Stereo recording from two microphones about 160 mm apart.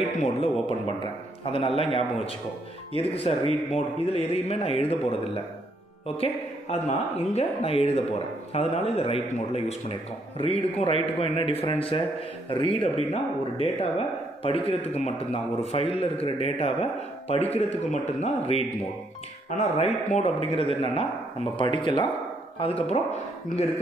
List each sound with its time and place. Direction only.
0.2 s a man's voice: 35° left (ahead or behind)
19.8 s speech: 40° left (ahead or behind)